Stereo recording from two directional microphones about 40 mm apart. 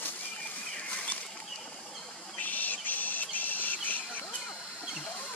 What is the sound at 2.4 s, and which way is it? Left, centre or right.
Steam, left.